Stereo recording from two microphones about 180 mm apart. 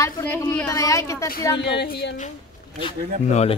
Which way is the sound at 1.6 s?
70° left (ahead or behind).